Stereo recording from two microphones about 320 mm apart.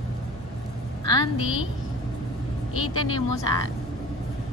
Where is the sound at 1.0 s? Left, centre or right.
Centre.